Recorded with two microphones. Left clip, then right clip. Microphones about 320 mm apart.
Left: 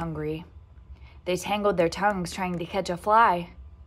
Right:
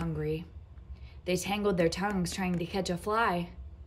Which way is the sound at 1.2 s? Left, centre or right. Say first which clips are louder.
Left 5 dB; centre.